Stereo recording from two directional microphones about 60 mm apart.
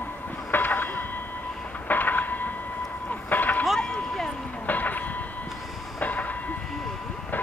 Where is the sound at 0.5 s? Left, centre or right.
Left.